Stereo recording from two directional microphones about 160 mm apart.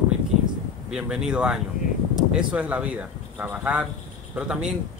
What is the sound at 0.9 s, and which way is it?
Speech, 5° right (ahead or behind).